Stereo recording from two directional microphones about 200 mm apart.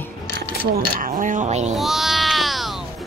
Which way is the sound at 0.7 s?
45° right (ahead or behind).